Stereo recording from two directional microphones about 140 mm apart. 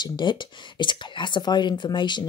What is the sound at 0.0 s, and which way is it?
Speech, 30° left (ahead or behind).